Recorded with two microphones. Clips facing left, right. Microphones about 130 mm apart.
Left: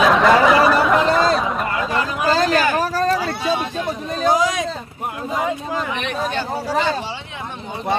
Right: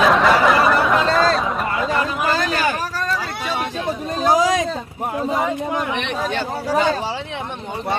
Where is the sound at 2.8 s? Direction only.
40° left (ahead or behind).